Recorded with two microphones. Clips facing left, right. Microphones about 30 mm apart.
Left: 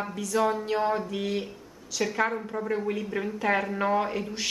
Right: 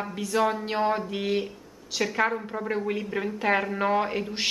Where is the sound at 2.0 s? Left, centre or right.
Centre.